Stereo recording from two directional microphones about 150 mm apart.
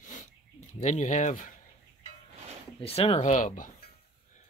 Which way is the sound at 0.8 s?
55° left (ahead or behind).